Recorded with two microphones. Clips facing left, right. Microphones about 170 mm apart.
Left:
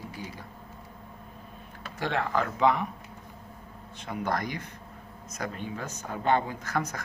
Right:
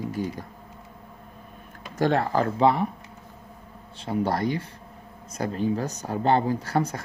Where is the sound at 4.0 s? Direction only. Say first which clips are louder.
Right 6 dB; 30° right (ahead or behind).